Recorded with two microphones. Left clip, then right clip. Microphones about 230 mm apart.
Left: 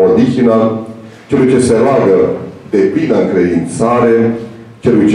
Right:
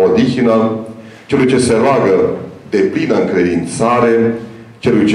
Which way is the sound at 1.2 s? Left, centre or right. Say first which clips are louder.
Left 2 dB; centre.